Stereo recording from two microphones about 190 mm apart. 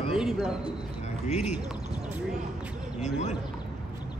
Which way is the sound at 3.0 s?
35° left (ahead or behind).